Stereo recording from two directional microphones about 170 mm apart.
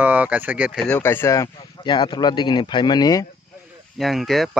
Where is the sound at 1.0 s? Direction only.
15° left (ahead or behind).